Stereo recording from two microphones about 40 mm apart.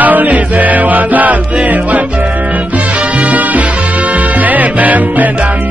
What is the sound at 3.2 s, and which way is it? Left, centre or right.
Music, right.